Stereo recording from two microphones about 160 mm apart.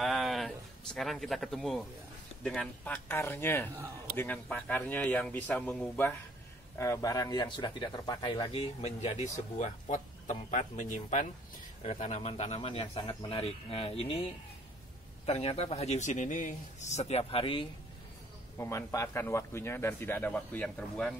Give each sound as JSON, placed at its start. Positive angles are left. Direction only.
{"t": 0.0, "sound": "a sound", "side_deg": 0}
{"t": 2.4, "sound": "a man's voice", "side_deg": 5}
{"t": 8.5, "sound": "a man's voice", "side_deg": 40}
{"t": 15.2, "sound": "a man's voice", "side_deg": 40}
{"t": 18.6, "sound": "a man's voice", "side_deg": 20}